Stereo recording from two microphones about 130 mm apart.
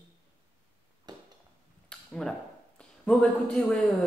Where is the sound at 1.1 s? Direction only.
30° right (ahead or behind).